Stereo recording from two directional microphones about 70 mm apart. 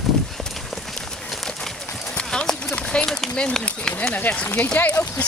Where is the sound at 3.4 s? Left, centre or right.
Centre.